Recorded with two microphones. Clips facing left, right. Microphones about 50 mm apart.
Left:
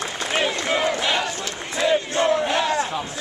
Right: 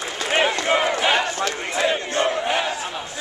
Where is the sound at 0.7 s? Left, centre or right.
Centre.